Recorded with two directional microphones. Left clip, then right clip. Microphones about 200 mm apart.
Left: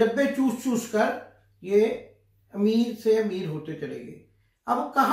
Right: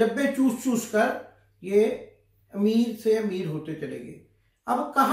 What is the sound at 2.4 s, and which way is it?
A man's voice, 5° right (ahead or behind).